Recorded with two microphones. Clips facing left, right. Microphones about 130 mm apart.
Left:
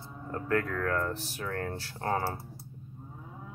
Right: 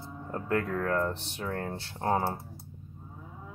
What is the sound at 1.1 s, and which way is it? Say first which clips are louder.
Speech: right 1 dB; 25° right (ahead or behind).